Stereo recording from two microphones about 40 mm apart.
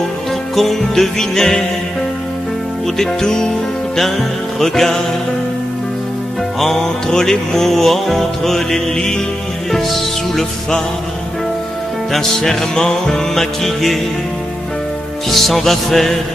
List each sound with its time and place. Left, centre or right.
0.6 s music: centre
3.0 s music: centre
4.6 s music: centre
6.6 s music: centre
12.1 s music: centre
12.8 s music: centre
13.3 s music: centre
15.2 s music: centre